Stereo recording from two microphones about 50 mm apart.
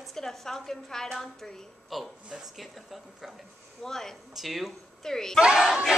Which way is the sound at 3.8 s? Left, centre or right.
Centre.